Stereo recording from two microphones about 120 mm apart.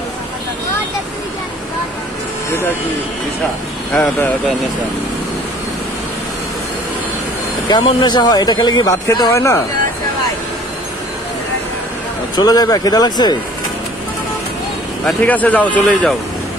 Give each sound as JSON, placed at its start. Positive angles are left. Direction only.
{"t": 3.9, "sound": "a man's voice", "side_deg": 15}
{"t": 7.6, "sound": "speech", "side_deg": 40}
{"t": 12.4, "sound": "speech", "side_deg": 30}
{"t": 15.2, "sound": "a man's voice", "side_deg": 15}